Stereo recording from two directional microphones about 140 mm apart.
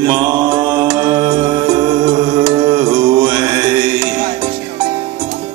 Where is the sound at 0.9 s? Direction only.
40° right (ahead or behind).